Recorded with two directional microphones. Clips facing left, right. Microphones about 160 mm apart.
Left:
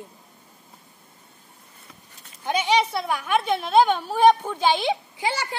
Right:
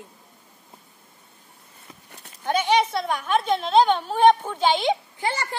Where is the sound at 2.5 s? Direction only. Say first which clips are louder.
Right 1 dB; 15° left (ahead or behind).